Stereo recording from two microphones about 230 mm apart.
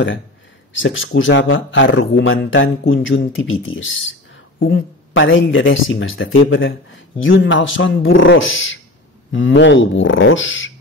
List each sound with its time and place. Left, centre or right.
0.7 s speech: left